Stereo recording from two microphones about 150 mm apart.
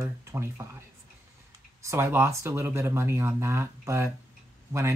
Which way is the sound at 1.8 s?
20° right (ahead or behind).